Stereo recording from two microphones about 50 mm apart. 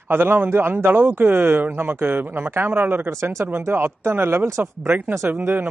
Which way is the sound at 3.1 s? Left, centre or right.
Right.